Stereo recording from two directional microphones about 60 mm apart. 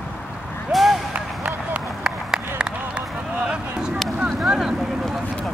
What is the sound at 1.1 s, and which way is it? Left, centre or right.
Vehicle, right.